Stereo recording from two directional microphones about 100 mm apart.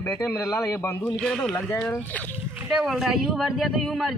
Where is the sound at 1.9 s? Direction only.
15° left (ahead or behind).